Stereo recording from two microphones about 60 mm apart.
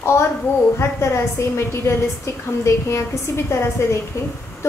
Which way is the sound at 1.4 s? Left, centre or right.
Left.